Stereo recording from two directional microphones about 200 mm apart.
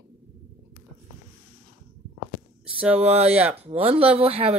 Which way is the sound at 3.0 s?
30° right (ahead or behind).